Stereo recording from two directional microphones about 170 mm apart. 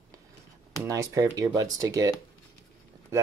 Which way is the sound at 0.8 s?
20° right (ahead or behind).